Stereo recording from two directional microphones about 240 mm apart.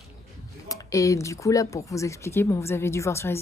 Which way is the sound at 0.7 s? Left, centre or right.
Centre.